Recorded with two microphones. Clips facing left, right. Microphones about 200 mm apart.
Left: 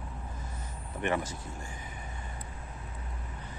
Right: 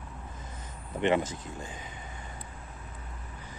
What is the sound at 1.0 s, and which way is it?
Speech, 20° right (ahead or behind).